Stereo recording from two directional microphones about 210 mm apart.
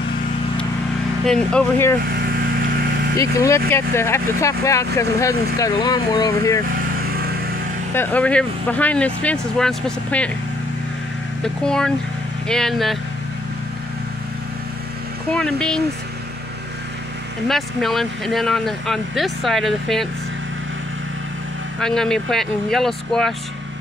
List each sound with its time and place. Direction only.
1.2 s speech: 5° left (ahead or behind)
3.2 s speech: 15° left (ahead or behind)
7.9 s speech: 10° left (ahead or behind)
11.4 s speech: 5° left (ahead or behind)
15.3 s speech: 5° left (ahead or behind)
17.5 s speech: centre (ahead or behind)
21.7 s speech: centre (ahead or behind)